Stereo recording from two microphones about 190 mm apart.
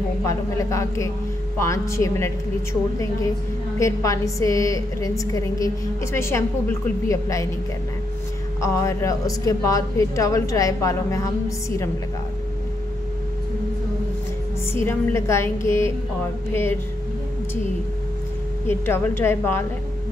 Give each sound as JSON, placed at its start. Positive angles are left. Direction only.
{"t": 0.3, "sound": "a woman's voice", "side_deg": 15}
{"t": 3.8, "sound": "a woman's voice", "side_deg": 15}
{"t": 8.5, "sound": "a woman's voice", "side_deg": 15}
{"t": 14.9, "sound": "a woman's voice", "side_deg": 15}
{"t": 18.7, "sound": "a woman's voice", "side_deg": 10}